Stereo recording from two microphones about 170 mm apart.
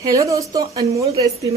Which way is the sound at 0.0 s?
20° right (ahead or behind).